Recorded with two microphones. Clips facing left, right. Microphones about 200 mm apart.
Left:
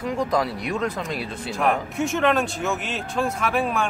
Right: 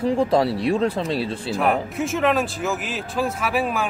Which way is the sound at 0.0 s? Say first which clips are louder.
Right 5 dB; 30° right (ahead or behind).